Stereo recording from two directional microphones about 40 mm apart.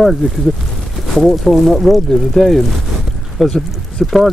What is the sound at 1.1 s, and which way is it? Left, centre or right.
Speech, centre.